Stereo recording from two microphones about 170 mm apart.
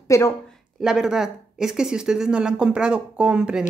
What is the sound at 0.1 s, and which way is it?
Speech, 15° left (ahead or behind).